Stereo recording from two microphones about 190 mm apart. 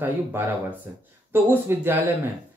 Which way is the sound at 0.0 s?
10° right (ahead or behind).